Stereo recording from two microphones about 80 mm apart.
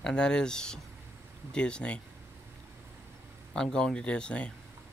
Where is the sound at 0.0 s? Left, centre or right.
Centre.